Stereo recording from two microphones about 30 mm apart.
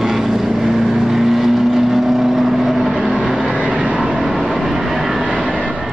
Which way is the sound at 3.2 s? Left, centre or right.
Centre.